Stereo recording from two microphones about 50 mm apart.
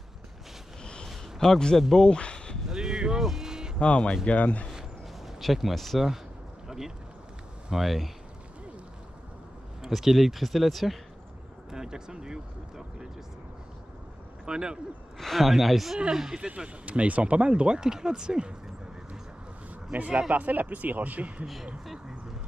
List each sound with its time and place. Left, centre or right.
1.0 s a sound: centre
2.7 s a sound: centre
3.3 s cattle: centre
3.8 s speech: left
5.2 s speech: centre
7.7 s speech: centre
9.8 s speech: centre
11.7 s speech: centre
14.4 s speech: centre
15.1 s speech: centre
16.0 s speech: centre
19.9 s speech: right
21.8 s speech: centre